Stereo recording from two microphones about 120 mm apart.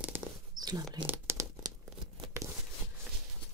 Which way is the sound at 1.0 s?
15° right (ahead or behind).